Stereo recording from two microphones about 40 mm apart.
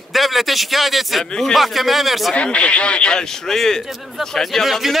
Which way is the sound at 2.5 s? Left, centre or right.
Left.